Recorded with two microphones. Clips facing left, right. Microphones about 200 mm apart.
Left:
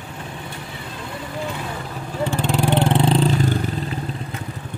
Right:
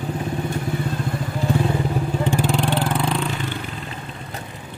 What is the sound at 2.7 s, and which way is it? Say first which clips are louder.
Vehicle: left 4 dB; 25° left (ahead or behind).